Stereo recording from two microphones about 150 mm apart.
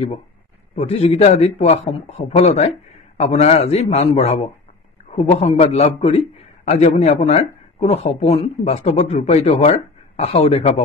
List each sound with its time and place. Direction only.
0.7 s a man's voice: 45° left (ahead or behind)